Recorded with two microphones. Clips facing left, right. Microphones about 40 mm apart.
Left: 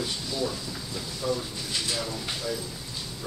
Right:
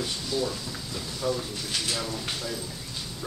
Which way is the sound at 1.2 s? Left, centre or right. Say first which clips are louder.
Even; right.